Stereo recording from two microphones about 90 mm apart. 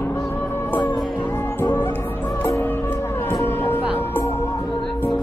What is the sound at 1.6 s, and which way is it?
Music, 30° left (ahead or behind).